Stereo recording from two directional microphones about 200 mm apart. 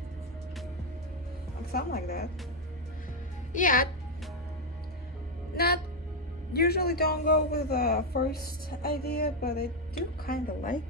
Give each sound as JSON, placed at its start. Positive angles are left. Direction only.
{"t": 1.7, "sound": "a woman's voice", "side_deg": 50}
{"t": 3.5, "sound": "a woman's voice", "side_deg": 45}
{"t": 6.5, "sound": "a woman's voice", "side_deg": 50}